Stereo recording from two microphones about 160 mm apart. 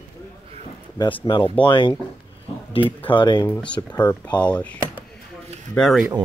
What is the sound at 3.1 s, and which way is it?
Speech, 30° left (ahead or behind).